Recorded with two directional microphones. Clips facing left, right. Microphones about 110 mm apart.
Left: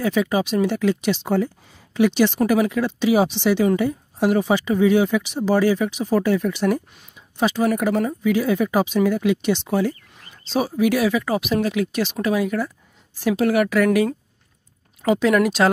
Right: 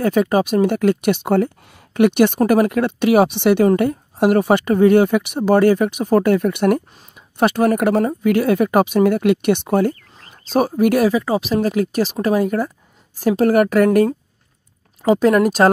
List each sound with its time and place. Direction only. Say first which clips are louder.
0.0 s speech: right 4 dB; 50° right (ahead or behind)
11.1 s speech: right 3 dB; 30° right (ahead or behind)
15.0 s speech: right 4 dB; 45° right (ahead or behind)